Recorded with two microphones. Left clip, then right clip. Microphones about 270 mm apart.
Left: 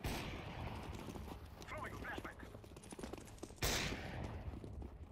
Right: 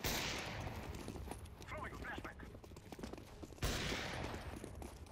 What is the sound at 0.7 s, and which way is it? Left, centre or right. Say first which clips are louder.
Clip-clop: even; centre.